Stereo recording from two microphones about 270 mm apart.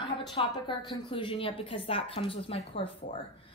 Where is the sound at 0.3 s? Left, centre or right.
Centre.